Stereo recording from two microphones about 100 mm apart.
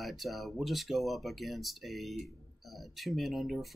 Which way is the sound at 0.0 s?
Centre (ahead or behind).